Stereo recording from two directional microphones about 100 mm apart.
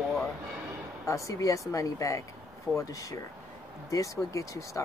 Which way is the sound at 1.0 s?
30° left (ahead or behind).